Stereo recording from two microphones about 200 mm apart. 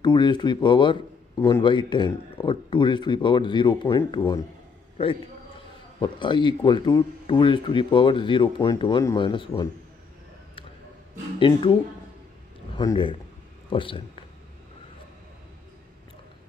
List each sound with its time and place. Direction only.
0.0 s a man's voice: 20° left (ahead or behind)
5.9 s a man's voice: 25° left (ahead or behind)
11.3 s a man's voice: 25° left (ahead or behind)
12.7 s a man's voice: 25° left (ahead or behind)